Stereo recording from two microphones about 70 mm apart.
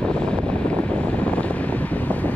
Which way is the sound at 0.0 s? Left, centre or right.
Centre.